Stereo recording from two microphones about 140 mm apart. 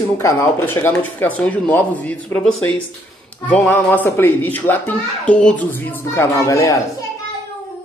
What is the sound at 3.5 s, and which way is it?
Speech, 15° left (ahead or behind).